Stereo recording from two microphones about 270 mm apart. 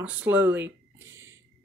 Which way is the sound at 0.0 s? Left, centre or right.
Centre.